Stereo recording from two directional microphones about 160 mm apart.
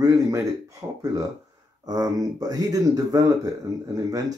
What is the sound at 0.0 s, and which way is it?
Speech, 20° right (ahead or behind).